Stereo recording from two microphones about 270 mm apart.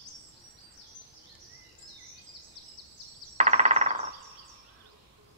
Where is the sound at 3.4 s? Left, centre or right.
Right.